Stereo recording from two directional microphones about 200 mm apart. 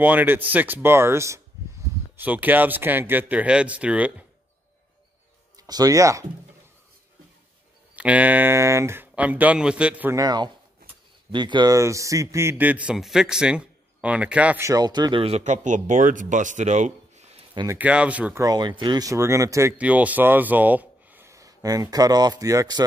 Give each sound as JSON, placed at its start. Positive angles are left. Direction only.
{"t": 0.0, "sound": "a man's voice", "side_deg": -10}
{"t": 5.6, "sound": "a man's voice", "side_deg": -20}
{"t": 7.9, "sound": "a man's voice", "side_deg": -5}
{"t": 17.6, "sound": "a man's voice", "side_deg": -10}